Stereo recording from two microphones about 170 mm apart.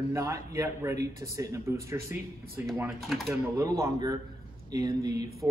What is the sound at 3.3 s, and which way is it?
Speech, 15° right (ahead or behind).